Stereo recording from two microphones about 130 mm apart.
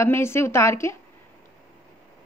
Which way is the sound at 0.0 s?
20° left (ahead or behind).